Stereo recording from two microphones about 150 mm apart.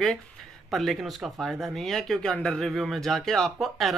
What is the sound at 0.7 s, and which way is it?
A man's voice, centre (ahead or behind).